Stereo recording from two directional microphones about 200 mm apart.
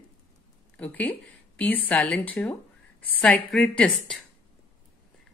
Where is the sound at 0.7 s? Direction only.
5° left (ahead or behind).